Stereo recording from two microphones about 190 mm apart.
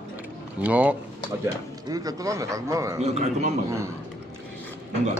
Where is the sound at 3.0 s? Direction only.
35° right (ahead or behind).